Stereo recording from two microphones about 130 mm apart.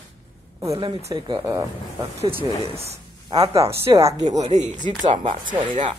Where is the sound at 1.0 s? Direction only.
25° right (ahead or behind).